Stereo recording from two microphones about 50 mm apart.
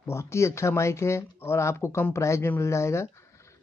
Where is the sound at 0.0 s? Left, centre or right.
Left.